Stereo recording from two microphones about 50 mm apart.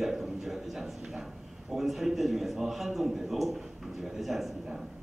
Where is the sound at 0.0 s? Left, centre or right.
Centre.